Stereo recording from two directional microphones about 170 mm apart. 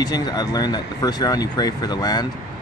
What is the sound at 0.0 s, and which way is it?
Speech, 25° left (ahead or behind).